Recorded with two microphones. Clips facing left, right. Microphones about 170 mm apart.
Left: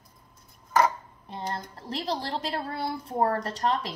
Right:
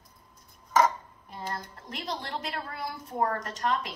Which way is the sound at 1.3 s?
30° left (ahead or behind).